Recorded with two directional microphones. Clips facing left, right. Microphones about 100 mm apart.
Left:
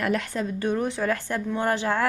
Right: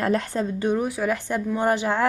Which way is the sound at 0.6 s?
20° right (ahead or behind).